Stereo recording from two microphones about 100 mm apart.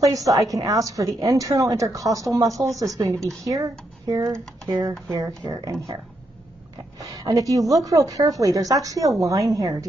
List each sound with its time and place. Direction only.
0.0 s a woman's voice: 35° right (ahead or behind)
7.0 s a woman's voice: 40° right (ahead or behind)